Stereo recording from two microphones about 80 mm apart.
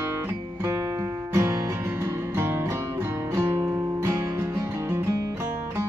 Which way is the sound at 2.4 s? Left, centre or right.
Right.